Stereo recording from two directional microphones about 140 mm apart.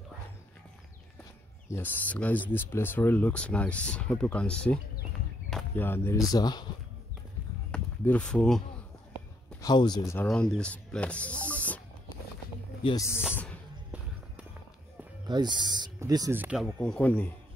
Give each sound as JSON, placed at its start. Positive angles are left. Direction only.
{"t": 1.7, "sound": "speech", "side_deg": 10}
{"t": 5.8, "sound": "speech", "side_deg": 15}
{"t": 6.3, "sound": "speech", "side_deg": 30}
{"t": 7.7, "sound": "a sound", "side_deg": 10}
{"t": 9.1, "sound": "a sound", "side_deg": 30}
{"t": 10.3, "sound": "speech", "side_deg": 5}
{"t": 12.9, "sound": "speech", "side_deg": 20}
{"t": 13.3, "sound": "a sound", "side_deg": 10}
{"t": 15.2, "sound": "speech", "side_deg": -30}
{"t": 16.3, "sound": "speech", "side_deg": -10}
{"t": 16.7, "sound": "speech", "side_deg": 10}